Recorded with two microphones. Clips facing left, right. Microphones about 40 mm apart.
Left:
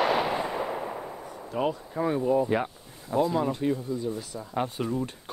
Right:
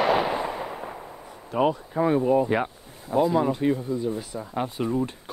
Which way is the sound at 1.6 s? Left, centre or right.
Right.